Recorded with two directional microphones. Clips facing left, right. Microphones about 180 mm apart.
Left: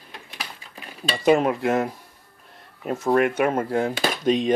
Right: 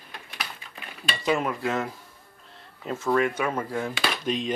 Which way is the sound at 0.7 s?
35° left (ahead or behind).